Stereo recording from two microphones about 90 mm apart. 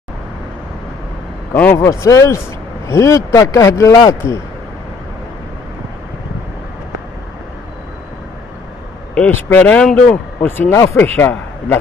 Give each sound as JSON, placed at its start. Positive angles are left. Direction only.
{"t": 1.5, "sound": "speech", "side_deg": 20}
{"t": 1.9, "sound": "speech", "side_deg": 35}
{"t": 9.1, "sound": "speech", "side_deg": 15}
{"t": 10.4, "sound": "speech", "side_deg": 25}